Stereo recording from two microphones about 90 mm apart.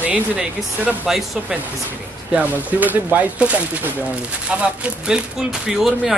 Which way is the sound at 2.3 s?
15° right (ahead or behind).